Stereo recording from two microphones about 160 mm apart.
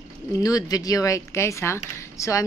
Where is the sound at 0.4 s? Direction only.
20° left (ahead or behind).